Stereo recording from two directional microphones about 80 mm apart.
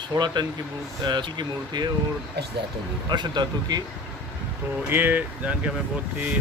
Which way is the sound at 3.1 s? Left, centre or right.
Right.